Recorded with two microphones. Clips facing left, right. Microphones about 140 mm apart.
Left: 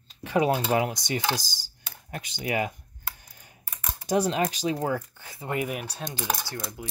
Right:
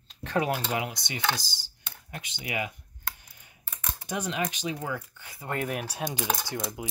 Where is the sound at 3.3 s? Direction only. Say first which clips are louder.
Left 4 dB; 40° left (ahead or behind).